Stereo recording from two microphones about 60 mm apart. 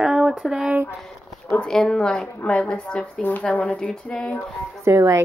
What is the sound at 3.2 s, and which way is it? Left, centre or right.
Speech, left.